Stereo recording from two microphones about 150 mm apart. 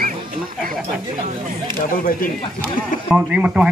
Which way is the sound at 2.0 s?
70° left (ahead or behind).